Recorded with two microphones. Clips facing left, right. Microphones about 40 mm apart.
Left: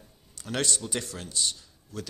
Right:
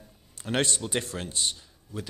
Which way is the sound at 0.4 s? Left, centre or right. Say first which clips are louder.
Right 3 dB; right.